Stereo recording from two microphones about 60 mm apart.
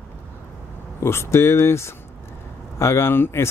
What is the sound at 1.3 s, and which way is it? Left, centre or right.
Speech, left.